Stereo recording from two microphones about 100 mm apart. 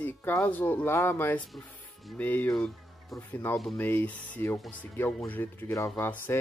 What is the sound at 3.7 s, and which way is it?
Speech, 20° left (ahead or behind).